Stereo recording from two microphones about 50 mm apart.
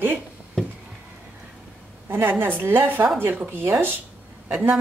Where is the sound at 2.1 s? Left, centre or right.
Right.